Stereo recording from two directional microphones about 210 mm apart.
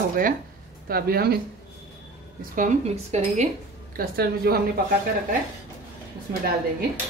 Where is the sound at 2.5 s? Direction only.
35° right (ahead or behind).